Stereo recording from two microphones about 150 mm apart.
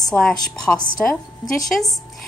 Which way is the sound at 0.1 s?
5° left (ahead or behind).